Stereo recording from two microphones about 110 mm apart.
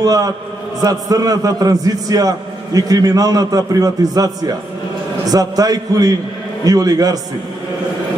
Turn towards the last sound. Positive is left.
turn(degrees=-35)  # may be behind; listen again after turning